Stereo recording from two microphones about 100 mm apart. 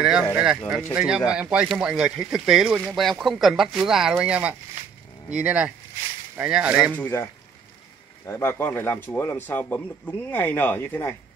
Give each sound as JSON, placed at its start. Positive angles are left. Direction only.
{"t": 0.0, "sound": "a sound", "side_deg": -5}
{"t": 0.9, "sound": "speech", "side_deg": -10}
{"t": 7.0, "sound": "a man's voice", "side_deg": 25}
{"t": 8.3, "sound": "a man's voice", "side_deg": 25}